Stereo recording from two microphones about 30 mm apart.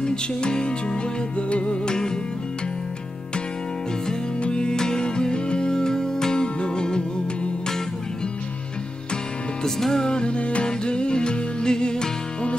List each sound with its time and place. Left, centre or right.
0.0 s music: left
1.5 s music: left
1.9 s music: left
4.4 s music: left
4.7 s music: left
9.8 s music: centre
10.0 s music: left
10.6 s music: left